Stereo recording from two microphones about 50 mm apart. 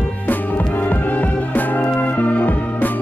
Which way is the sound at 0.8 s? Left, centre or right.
Left.